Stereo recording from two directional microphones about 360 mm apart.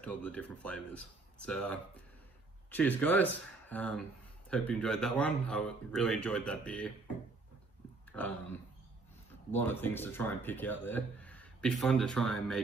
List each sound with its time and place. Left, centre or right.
0.0 s speech: centre
8.1 s speech: centre